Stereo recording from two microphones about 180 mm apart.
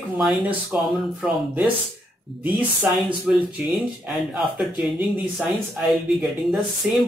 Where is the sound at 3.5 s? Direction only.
Centre (ahead or behind).